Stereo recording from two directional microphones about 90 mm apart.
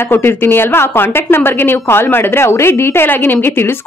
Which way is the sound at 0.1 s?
25° left (ahead or behind).